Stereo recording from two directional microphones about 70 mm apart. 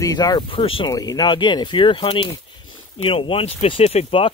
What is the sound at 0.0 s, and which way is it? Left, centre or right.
Speech, left.